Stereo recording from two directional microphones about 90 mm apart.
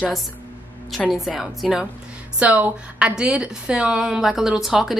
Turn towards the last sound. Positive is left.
turn(degrees=-5)  # may be behind; listen again after turning